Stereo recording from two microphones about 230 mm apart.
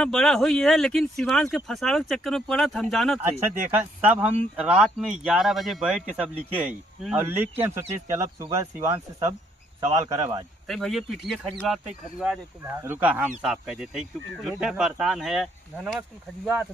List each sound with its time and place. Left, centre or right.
0.0 s speech: centre
9.8 s speech: centre
10.7 s speech: centre